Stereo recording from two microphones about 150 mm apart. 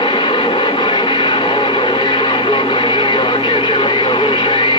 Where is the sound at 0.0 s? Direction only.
35° left (ahead or behind).